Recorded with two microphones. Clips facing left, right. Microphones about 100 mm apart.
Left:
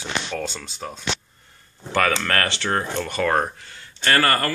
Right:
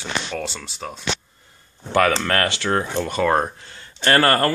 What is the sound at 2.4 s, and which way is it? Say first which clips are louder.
Speech: right 2 dB; 15° right (ahead or behind).